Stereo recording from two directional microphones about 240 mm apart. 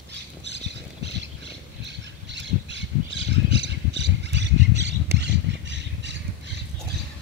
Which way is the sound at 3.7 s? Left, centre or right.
Right.